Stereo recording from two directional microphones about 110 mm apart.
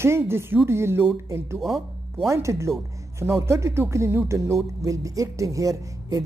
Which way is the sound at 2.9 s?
30° right (ahead or behind).